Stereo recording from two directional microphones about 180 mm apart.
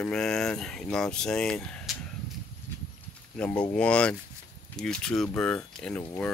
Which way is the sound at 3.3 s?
5° left (ahead or behind).